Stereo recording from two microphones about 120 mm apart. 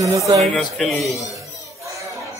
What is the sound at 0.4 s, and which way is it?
Speech, centre (ahead or behind).